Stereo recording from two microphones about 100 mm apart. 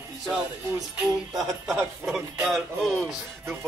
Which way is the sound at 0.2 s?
10° right (ahead or behind).